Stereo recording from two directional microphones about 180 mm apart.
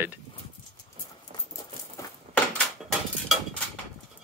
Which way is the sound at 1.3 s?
35° right (ahead or behind).